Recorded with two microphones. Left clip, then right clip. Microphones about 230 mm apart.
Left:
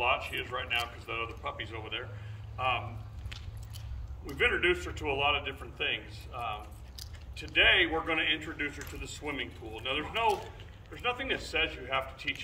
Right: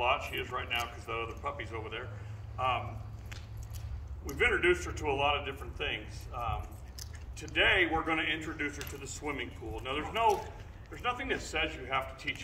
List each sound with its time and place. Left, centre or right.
0.0 s a man's voice: centre
4.3 s a man's voice: centre